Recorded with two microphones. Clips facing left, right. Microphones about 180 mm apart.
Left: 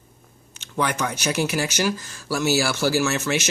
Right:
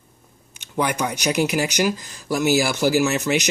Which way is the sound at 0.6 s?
15° right (ahead or behind).